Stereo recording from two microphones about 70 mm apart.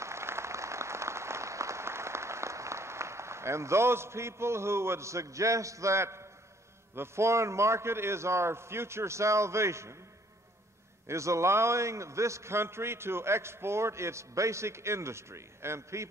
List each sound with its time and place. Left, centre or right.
0.0 s applause: right
7.0 s a man's voice: right
11.1 s a man's voice: right